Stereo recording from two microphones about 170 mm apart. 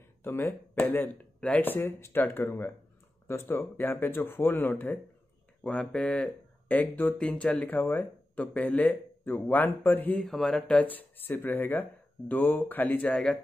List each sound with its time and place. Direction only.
0.2 s speech: 15° left (ahead or behind)